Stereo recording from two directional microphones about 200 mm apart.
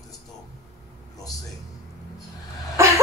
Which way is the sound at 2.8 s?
15° right (ahead or behind).